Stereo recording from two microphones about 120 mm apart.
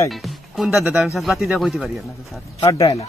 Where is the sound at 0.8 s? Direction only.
10° right (ahead or behind).